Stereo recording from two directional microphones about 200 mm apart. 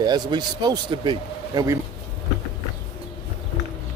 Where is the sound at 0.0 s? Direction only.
20° right (ahead or behind).